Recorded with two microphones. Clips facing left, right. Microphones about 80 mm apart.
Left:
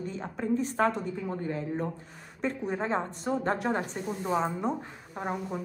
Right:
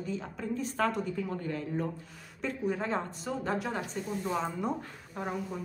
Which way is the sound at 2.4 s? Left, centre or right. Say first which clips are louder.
Left 1 dB; left.